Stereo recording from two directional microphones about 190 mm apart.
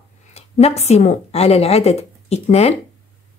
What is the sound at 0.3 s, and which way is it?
A woman's voice, 35° left (ahead or behind).